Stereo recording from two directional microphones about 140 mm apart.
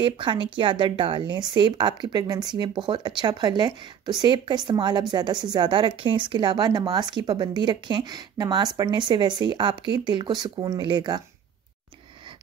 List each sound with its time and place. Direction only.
0.0 s a woman's voice: 35° right (ahead or behind)